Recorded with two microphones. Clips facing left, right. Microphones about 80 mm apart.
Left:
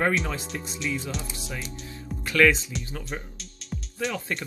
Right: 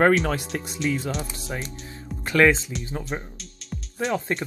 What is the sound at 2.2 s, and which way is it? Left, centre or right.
Speech, right.